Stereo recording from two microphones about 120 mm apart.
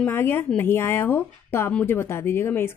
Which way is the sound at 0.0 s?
15° left (ahead or behind).